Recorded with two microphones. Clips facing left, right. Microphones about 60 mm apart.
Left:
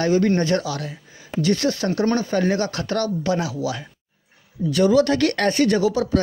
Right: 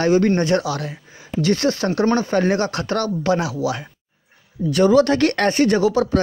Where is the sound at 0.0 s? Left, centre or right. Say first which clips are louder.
Right 2 dB; right.